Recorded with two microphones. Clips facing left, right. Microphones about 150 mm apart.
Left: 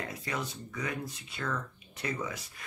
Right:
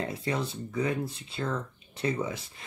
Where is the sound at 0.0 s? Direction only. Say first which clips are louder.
Right 6 dB; 30° right (ahead or behind).